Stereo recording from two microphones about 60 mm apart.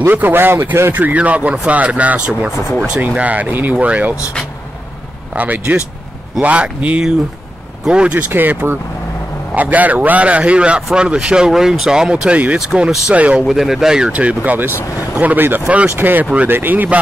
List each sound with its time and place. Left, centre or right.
0.0 s a man's voice: right
5.3 s a man's voice: right
8.3 s a man's voice: right
13.5 s speech: centre
14.1 s a man's voice: right
16.0 s a man's voice: right